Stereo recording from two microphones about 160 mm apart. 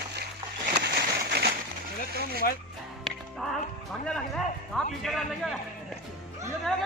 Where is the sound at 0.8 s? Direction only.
90° right.